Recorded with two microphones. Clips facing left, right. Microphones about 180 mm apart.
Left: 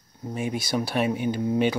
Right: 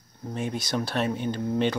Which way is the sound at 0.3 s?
10° left (ahead or behind).